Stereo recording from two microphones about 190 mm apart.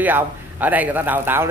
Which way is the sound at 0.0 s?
10° right (ahead or behind).